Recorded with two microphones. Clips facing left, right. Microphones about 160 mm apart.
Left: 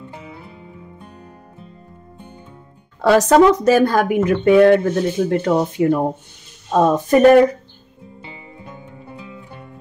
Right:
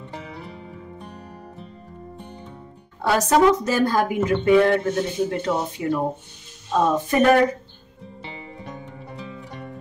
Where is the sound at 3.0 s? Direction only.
80° left; by 5.9 s 55° left (ahead or behind).